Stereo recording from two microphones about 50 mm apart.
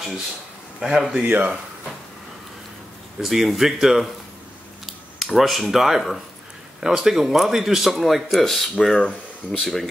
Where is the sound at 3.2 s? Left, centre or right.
Centre.